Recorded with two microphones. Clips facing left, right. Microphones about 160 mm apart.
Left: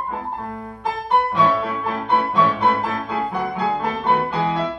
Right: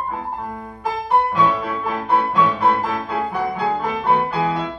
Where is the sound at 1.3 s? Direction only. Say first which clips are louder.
Even; centre (ahead or behind).